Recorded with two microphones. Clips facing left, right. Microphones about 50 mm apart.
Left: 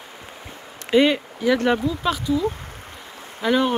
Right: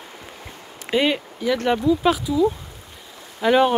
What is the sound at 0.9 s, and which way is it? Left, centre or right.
Speech, centre.